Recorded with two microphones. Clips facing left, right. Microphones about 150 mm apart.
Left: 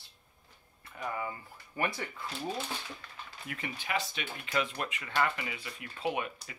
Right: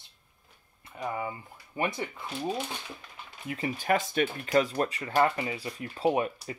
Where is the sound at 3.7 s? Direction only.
45° right (ahead or behind).